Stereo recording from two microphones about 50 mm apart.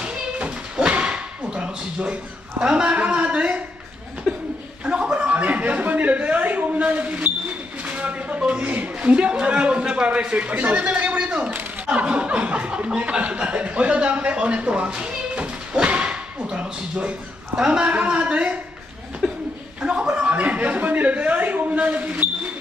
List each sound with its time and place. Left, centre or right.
0.0 s a sound: right
2.6 s a man's voice: right
4.3 s chuckle: centre
4.8 s chuckle: right
7.8 s a sound: right
8.4 s a man's voice: right
19.2 s chuckle: centre
19.8 s chuckle: centre
20.3 s a sound: right